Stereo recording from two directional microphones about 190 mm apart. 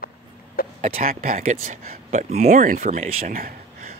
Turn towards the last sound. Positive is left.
turn(degrees=-45)  # may be behind; listen again after turning